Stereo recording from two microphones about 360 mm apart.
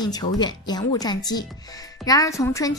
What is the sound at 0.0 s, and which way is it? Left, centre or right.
A woman's voice, centre.